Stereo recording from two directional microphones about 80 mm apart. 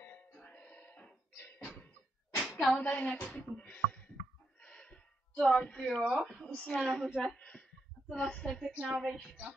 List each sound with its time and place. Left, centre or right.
0.0 s music: left
1.4 s a sound: left
2.4 s a sound: centre
2.8 s a woman's voice: centre
4.6 s gasp: centre
6.0 s a woman's voice: centre
6.4 s a woman's voice: centre
7.2 s a sound: centre
8.1 s a woman's voice: centre
8.7 s a woman's voice: centre